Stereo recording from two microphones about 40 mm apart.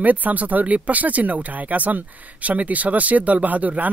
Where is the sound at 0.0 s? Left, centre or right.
Right.